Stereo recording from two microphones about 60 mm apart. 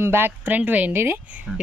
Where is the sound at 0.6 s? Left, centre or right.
Right.